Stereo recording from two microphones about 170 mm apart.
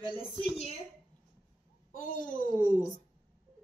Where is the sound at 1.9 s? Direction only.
50° left (ahead or behind).